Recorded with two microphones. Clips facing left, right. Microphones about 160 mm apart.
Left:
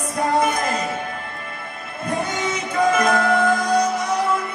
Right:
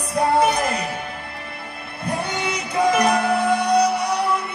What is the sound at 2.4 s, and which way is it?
Music, 35° right (ahead or behind).